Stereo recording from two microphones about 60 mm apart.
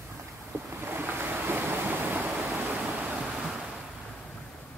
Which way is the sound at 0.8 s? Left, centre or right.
Right.